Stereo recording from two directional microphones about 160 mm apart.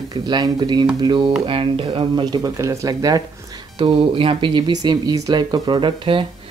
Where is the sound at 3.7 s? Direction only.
35° right (ahead or behind).